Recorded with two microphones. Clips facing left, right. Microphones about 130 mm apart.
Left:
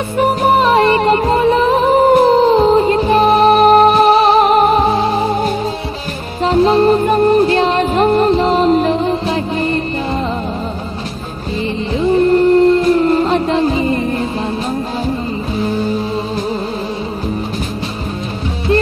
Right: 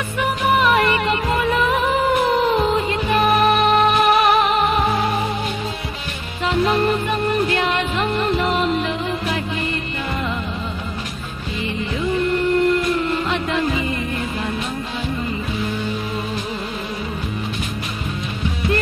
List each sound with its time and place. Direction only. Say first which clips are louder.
0.2 s music: left 6 dB; 35° left (ahead or behind)
12.0 s music: left 9 dB; 35° left (ahead or behind)
15.6 s music: left 10 dB; 35° left (ahead or behind)